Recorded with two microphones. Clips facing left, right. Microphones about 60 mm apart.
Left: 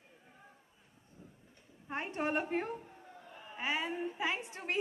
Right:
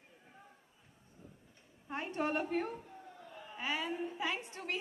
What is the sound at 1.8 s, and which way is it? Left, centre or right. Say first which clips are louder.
A woman's voice: even; left.